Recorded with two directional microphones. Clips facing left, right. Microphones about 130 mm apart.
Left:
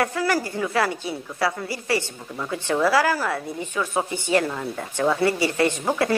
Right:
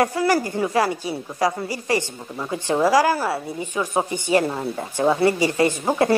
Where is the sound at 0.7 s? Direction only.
15° right (ahead or behind).